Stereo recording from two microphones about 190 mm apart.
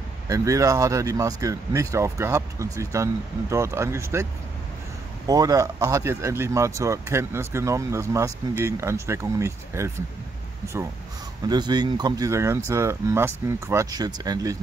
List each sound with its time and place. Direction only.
0.3 s speech: 15° right (ahead or behind)
11.4 s speech: 20° right (ahead or behind)